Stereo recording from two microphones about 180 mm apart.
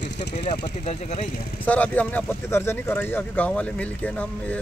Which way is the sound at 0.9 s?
35° left (ahead or behind).